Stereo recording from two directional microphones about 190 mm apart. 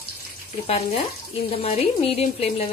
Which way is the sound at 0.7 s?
35° left (ahead or behind).